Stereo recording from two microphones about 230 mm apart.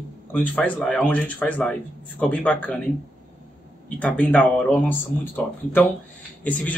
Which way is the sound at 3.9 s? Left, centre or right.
Centre.